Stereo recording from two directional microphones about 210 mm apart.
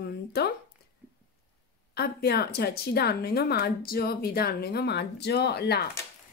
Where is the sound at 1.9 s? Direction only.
50° left (ahead or behind).